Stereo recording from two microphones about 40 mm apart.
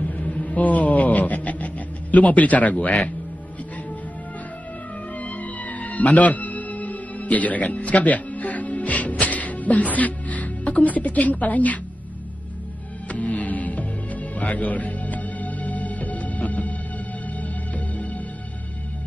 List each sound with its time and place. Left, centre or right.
0.0 s a sound: left
5.2 s music: left
13.1 s music: left